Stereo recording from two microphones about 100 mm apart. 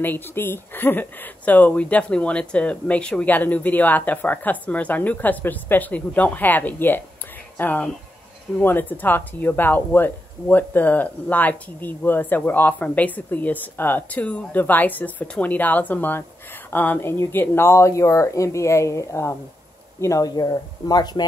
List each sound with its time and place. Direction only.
0.0 s speech: 20° left (ahead or behind); by 21.3 s 45° left (ahead or behind)